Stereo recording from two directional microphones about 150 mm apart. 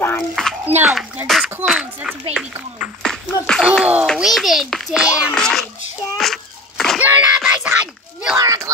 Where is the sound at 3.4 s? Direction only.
5° left (ahead or behind).